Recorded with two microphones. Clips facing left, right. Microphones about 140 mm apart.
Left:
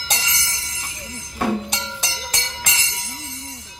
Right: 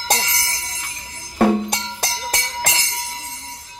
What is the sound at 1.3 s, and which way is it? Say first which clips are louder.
Music: right 6 dB; 60° right (ahead or behind).